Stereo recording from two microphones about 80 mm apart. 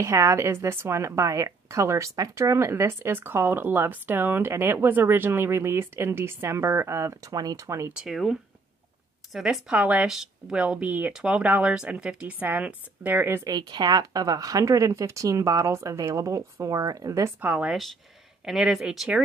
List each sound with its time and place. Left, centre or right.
0.0 s a woman's voice: right
7.9 s speech: centre
10.0 s speech: centre
10.6 s speech: centre
13.4 s speech: right
17.4 s speech: centre